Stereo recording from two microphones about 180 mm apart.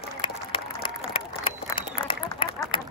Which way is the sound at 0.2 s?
30° left (ahead or behind).